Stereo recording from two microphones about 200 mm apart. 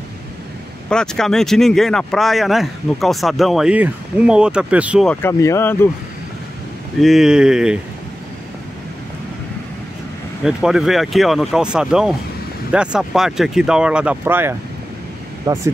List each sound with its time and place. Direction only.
0.8 s speech: 5° left (ahead or behind)
5.2 s speech: 15° left (ahead or behind)
7.0 s speech: centre (ahead or behind)
10.4 s speech: centre (ahead or behind)